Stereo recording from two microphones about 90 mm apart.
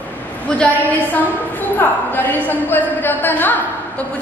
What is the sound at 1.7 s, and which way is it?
A woman's voice, 20° left (ahead or behind).